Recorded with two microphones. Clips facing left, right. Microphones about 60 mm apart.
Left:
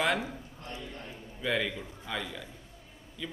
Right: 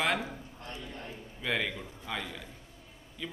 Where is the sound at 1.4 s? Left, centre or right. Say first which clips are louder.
Left 2 dB; centre.